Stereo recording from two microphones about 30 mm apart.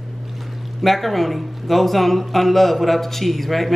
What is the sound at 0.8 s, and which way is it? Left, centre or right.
Speech, centre.